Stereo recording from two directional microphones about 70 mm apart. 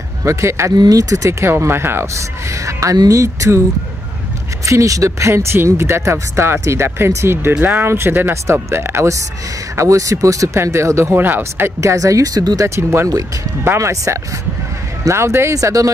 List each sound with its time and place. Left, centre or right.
0.2 s speech: right
0.7 s speech: right
1.5 s speech: right
2.6 s speech: right
4.6 s speech: right
11.1 s speech: right
11.8 s speech: right
15.6 s speech: right